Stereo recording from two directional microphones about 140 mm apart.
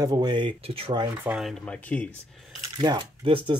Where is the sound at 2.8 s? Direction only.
30° right (ahead or behind).